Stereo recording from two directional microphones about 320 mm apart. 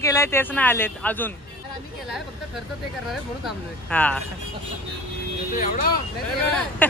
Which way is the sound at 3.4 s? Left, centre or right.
Centre.